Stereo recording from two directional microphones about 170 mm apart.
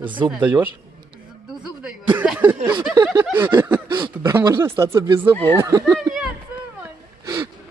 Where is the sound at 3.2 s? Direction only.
10° right (ahead or behind).